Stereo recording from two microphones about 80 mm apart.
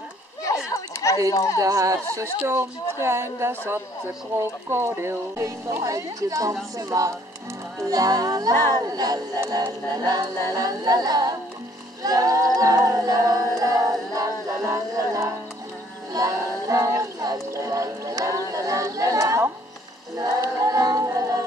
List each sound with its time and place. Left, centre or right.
0.7 s chatter: left
1.3 s speech: left
1.6 s speech: right
6.8 s a capella: right
10.0 s music: right
12.0 s singing: right
16.1 s speech: right
20.2 s a capella: right